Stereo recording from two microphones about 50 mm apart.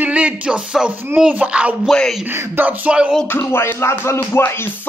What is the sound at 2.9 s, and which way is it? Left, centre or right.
Speech, right.